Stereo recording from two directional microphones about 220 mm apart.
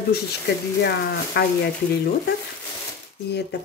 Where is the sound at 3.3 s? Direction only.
50° left (ahead or behind).